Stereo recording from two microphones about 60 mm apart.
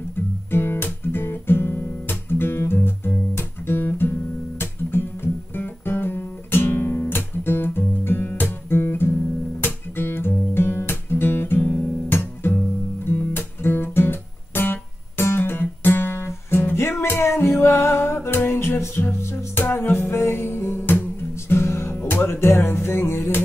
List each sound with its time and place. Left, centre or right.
0.5 s guitar: left
12.1 s music: left